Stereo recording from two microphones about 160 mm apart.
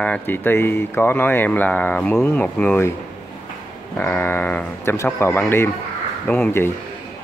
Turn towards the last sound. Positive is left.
turn(degrees=10)  # may be behind; listen again after turning